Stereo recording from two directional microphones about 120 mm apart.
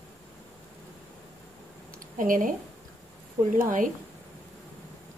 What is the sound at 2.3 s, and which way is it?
A woman's voice, 90° right.